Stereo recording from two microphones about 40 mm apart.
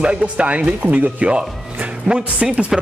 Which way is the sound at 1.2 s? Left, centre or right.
Right.